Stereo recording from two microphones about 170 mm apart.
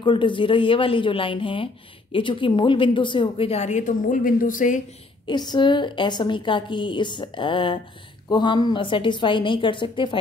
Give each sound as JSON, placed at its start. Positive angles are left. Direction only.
{"t": 0.0, "sound": "a woman's voice", "side_deg": 30}
{"t": 5.2, "sound": "a woman's voice", "side_deg": 25}